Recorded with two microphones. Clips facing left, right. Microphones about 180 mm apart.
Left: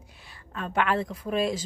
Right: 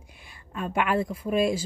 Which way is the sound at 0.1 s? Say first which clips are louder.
Right 2 dB; 10° right (ahead or behind).